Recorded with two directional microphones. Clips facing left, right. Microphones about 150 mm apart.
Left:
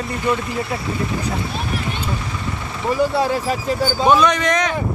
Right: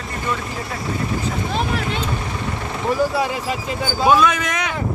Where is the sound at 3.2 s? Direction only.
40° left (ahead or behind).